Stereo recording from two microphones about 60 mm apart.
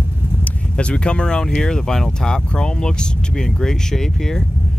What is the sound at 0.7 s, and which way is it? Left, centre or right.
Speech, centre.